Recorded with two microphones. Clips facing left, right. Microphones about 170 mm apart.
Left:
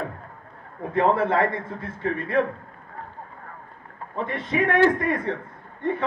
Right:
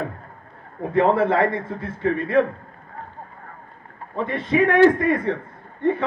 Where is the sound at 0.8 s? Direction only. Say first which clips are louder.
Right 3 dB; 25° right (ahead or behind).